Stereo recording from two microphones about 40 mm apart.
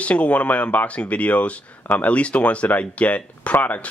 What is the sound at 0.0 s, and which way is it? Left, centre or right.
Speech, left.